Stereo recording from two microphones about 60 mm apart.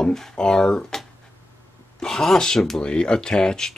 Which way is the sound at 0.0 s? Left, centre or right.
Centre.